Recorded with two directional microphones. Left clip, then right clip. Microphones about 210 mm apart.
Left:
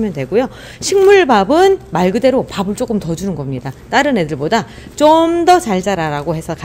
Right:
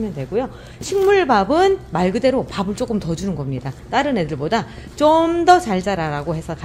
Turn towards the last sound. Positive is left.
turn(degrees=25)  # may be behind; listen again after turning